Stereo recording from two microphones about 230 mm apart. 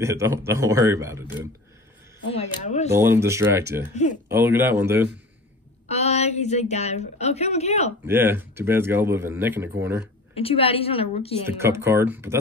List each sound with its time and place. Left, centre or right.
0.0 s speech: centre
2.3 s a woman's voice: left
2.9 s speech: centre
5.9 s a woman's voice: left
8.1 s speech: centre
10.3 s a woman's voice: left
11.4 s speech: centre